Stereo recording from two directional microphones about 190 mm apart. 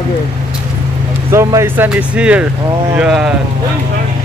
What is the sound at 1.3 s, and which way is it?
Speech, 15° right (ahead or behind).